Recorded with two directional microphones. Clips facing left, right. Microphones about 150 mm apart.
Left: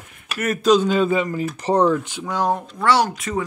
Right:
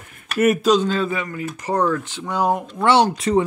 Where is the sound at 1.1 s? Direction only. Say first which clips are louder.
Left 5 dB; 25° left (ahead or behind).